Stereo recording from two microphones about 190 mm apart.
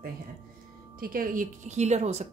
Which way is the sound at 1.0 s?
50° right (ahead or behind).